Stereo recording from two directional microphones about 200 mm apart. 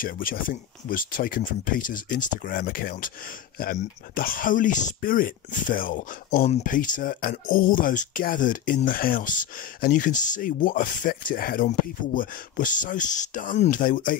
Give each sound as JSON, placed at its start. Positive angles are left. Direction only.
{"t": 0.0, "sound": "speech", "side_deg": 45}